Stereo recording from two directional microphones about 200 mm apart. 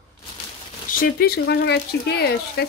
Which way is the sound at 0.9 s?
50° left (ahead or behind).